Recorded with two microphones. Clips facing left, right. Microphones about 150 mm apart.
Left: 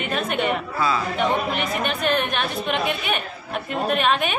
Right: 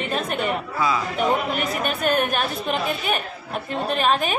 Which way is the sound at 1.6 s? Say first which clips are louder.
Even; 40° right (ahead or behind).